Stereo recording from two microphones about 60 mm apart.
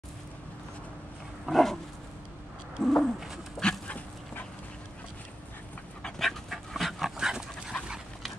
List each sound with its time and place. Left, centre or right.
1.4 s dog: centre
2.8 s bird: centre
3.2 s dog: centre
3.8 s dog: left
6.0 s dog: centre